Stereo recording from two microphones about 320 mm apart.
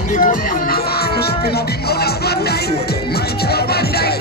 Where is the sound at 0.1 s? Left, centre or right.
Left.